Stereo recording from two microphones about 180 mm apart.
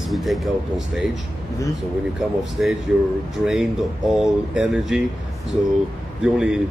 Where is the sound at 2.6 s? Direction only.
5° right (ahead or behind).